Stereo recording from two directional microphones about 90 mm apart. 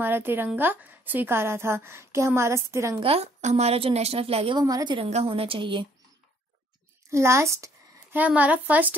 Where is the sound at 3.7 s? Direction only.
90° right.